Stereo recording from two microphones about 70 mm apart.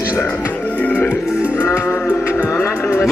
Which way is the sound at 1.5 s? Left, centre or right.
Left.